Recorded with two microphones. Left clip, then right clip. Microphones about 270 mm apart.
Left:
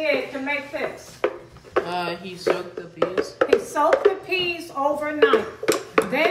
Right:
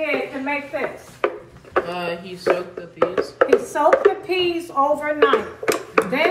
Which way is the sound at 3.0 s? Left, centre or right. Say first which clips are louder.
Right 3 dB; centre.